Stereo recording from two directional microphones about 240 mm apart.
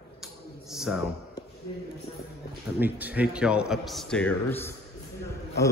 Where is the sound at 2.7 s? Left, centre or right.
Centre.